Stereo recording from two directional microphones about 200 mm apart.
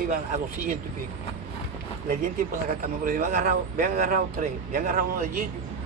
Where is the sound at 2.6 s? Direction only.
45° right (ahead or behind).